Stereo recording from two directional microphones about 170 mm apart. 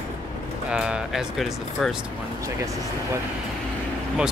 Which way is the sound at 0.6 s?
5° right (ahead or behind).